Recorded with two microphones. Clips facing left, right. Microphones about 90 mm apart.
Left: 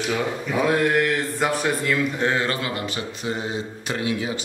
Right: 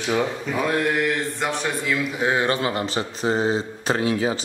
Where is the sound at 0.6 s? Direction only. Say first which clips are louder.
Left 2 dB; centre (ahead or behind).